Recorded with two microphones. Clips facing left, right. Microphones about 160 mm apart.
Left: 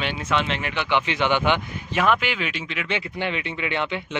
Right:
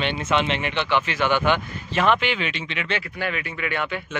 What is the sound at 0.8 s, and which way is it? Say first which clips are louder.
Speech: left 1 dB; 20° left (ahead or behind).